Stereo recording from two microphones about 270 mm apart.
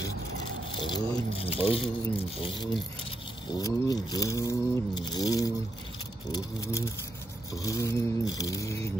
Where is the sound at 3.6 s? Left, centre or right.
Centre.